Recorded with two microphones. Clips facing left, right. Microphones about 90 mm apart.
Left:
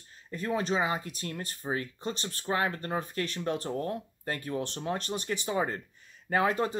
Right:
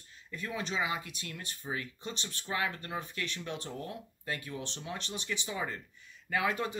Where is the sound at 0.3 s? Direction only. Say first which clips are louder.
Left 7 dB; 40° left (ahead or behind).